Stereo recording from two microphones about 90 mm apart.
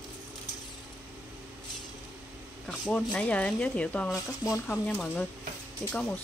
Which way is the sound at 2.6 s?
10° left (ahead or behind).